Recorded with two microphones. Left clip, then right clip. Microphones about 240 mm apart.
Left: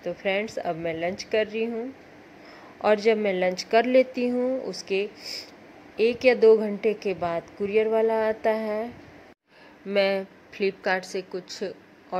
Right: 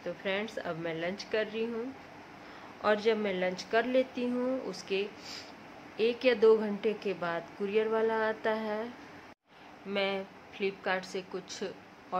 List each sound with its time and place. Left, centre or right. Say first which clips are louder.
0.0 s a woman's voice: left 7 dB; centre
2.8 s a woman's voice: left 7 dB; centre
9.8 s a woman's voice: left 9 dB; left